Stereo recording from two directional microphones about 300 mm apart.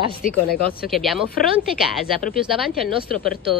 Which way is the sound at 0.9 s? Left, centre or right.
Centre.